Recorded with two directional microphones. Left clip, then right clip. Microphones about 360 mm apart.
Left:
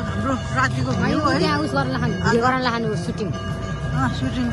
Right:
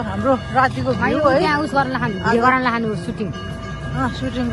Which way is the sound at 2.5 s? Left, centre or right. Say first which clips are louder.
Right 3 dB; right.